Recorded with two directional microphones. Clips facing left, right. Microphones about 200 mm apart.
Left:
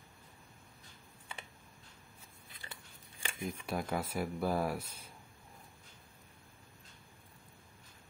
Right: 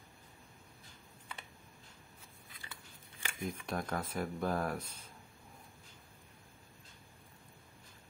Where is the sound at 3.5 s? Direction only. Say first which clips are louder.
Left 1 dB; 5° left (ahead or behind).